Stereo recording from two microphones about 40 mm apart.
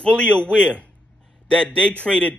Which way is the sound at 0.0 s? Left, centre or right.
Left.